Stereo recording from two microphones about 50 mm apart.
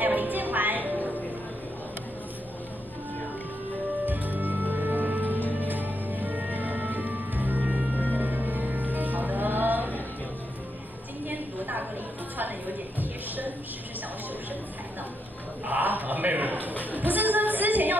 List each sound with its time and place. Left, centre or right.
0.0 s music: right
4.0 s music: right
7.6 s music: right
8.0 s music: right
11.2 s a sound: right
15.6 s a sound: right
16.9 s music: right